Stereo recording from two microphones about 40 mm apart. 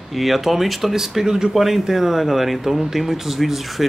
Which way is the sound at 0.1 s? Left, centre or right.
Centre.